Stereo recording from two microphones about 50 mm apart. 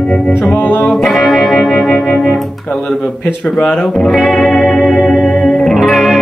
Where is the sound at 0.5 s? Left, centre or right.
Left.